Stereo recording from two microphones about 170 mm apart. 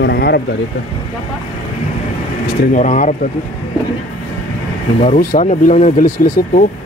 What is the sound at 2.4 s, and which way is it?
Speech, 50° left (ahead or behind).